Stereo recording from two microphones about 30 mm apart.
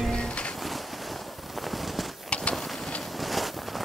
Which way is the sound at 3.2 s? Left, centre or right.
Centre.